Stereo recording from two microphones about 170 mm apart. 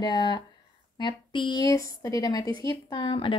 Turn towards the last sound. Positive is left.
turn(degrees=30)  # may be behind; listen again after turning